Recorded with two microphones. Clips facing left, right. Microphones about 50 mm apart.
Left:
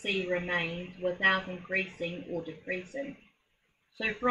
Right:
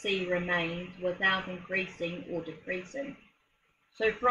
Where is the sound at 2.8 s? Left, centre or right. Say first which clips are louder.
Even; centre.